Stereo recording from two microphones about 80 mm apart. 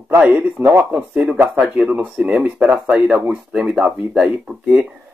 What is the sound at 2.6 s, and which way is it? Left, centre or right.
Speech, centre.